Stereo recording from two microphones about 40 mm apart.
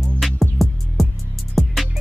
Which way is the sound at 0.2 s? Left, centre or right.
Centre.